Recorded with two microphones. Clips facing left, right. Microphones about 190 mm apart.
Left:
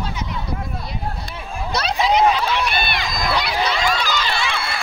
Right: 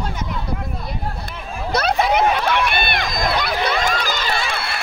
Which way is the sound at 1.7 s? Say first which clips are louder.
Right 1 dB; 55° right (ahead or behind).